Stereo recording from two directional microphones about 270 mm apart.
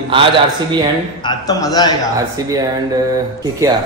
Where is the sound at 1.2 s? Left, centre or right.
Centre.